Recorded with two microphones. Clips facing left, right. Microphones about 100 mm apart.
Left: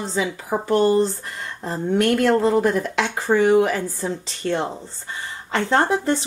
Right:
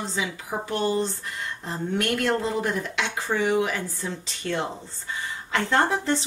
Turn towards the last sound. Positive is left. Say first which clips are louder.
# left 4 dB
turn(degrees=40)  # may be behind; listen again after turning